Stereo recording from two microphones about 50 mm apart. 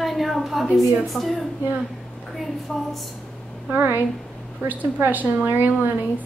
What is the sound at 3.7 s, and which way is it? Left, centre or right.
A woman's voice, right.